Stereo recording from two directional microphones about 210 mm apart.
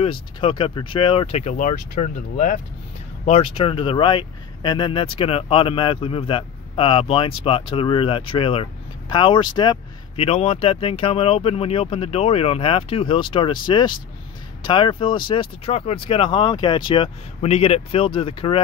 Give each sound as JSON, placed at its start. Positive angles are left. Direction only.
{"t": 0.0, "sound": "speech", "side_deg": 25}
{"t": 3.3, "sound": "speech", "side_deg": 25}